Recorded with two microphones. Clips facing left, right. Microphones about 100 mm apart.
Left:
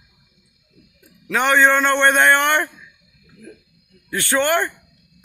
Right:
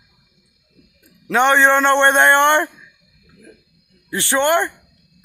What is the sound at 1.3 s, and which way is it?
Speech, 25° right (ahead or behind).